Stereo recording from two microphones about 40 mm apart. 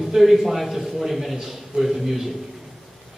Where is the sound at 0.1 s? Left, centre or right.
Centre.